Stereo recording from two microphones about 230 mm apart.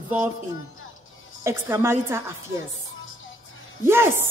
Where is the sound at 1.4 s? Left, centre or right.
Centre.